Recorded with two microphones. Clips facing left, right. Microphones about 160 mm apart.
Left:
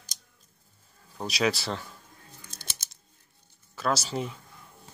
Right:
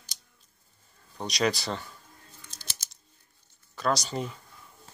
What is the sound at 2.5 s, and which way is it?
Scissors, 55° left (ahead or behind).